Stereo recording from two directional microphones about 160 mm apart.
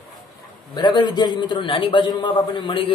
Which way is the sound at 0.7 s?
30° left (ahead or behind).